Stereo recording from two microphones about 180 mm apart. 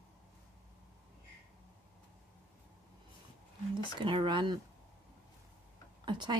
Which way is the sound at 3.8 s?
25° right (ahead or behind).